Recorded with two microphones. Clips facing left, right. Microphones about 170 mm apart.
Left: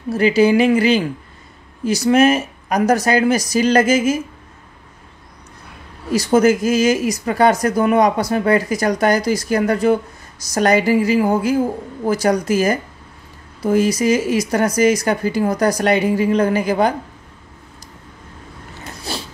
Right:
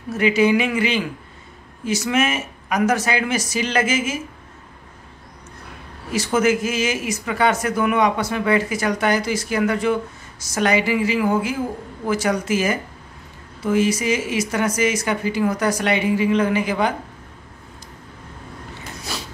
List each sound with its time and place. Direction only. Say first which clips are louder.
0.1 s speech: left 4 dB; 35° left (ahead or behind)
6.1 s speech: left 5 dB; 35° left (ahead or behind)
19.1 s a sound: left 4 dB; 30° left (ahead or behind)